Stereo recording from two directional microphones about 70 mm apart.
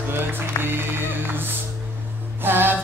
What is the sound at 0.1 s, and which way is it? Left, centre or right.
Music, right.